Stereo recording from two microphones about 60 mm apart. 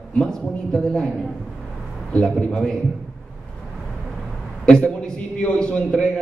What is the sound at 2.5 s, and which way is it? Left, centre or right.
Speech, centre.